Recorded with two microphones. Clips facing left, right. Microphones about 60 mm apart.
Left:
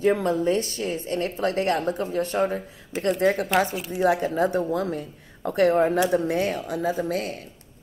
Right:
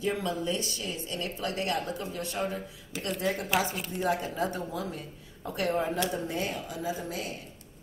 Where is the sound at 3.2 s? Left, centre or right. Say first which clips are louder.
Left 8 dB; left.